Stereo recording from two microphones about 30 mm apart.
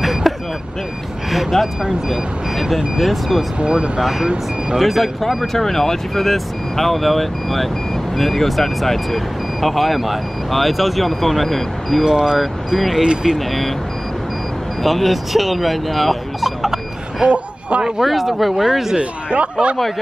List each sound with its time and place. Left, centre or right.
0.0 s vehicle: centre
2.0 s speech: centre
3.5 s speech: right
4.7 s speech: centre
12.0 s speech: centre
12.4 s speech: centre
14.8 s speech: centre
17.3 s speech: right
18.0 s speech: centre
18.9 s speech: right